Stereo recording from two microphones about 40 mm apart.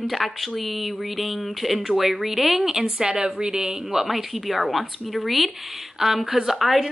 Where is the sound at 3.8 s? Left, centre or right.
Centre.